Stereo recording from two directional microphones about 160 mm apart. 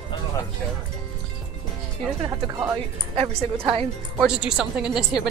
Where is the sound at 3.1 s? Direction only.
35° right (ahead or behind).